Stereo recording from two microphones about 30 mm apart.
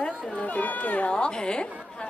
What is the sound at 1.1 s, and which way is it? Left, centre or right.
Speech, left.